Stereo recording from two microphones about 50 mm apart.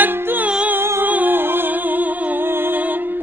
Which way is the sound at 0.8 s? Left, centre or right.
Right.